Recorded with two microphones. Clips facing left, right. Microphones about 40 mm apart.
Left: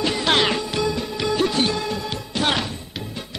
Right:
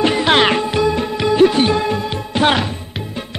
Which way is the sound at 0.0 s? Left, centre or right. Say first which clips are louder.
Right 6 dB; right.